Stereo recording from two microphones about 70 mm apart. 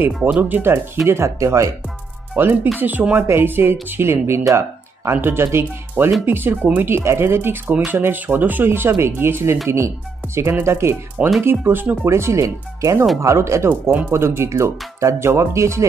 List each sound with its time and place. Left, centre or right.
0.2 s speech: right
1.0 s speech: right
2.3 s speech: right
12.1 s speech: right